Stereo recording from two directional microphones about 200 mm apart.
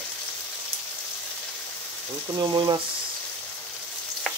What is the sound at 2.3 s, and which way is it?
Speech, 20° right (ahead or behind).